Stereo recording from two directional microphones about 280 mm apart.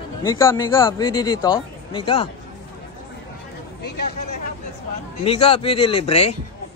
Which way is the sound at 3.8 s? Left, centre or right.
Left.